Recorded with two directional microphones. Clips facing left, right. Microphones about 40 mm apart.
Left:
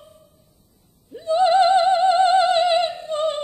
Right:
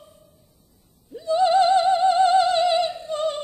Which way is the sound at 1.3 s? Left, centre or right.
Left.